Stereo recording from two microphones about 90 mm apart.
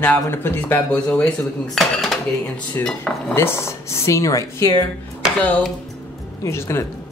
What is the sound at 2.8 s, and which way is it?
Cutlery, 10° left (ahead or behind).